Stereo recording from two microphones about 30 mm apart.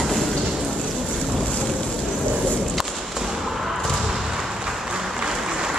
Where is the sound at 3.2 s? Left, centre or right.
Centre.